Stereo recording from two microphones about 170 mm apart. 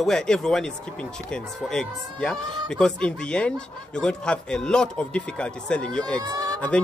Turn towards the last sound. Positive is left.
turn(degrees=-20)  # may be behind; listen again after turning